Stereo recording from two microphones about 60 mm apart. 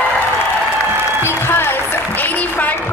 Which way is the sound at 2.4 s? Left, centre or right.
Left.